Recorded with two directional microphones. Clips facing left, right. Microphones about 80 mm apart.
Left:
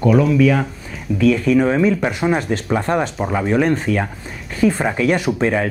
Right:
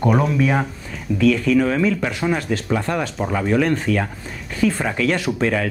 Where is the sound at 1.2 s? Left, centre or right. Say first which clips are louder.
Left 2 dB; left.